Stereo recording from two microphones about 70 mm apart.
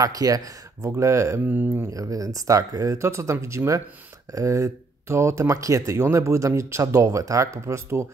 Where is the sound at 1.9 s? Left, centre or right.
Right.